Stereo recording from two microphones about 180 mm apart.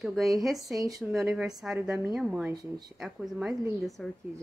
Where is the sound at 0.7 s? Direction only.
20° right (ahead or behind).